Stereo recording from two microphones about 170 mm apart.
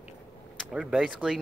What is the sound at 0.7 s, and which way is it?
Speech, 5° right (ahead or behind).